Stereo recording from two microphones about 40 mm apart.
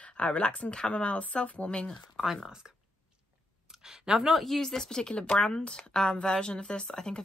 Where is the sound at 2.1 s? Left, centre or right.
Centre.